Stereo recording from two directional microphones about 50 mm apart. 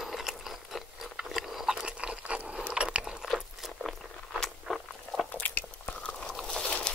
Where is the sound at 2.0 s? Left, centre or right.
Right.